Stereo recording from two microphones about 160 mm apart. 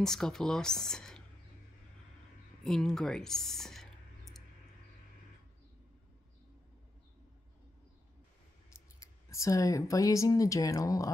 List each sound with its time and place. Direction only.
0.0 s speech: 5° left (ahead or behind)
2.6 s speech: 5° left (ahead or behind)
9.0 s speech: 20° left (ahead or behind)